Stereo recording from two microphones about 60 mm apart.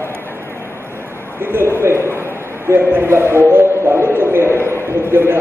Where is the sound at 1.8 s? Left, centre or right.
Right.